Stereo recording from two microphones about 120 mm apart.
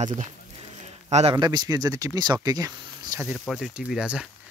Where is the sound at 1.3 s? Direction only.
35° right (ahead or behind).